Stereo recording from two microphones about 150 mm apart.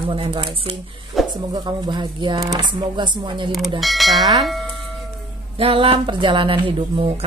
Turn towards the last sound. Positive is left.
turn(degrees=-35)  # may be behind; listen again after turning